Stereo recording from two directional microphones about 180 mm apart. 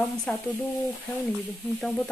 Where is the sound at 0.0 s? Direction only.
5° left (ahead or behind).